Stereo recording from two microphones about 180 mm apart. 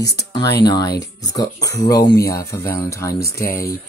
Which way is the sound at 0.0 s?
20° left (ahead or behind).